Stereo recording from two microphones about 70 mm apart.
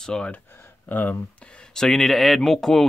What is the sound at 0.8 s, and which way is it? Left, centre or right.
Speech, left.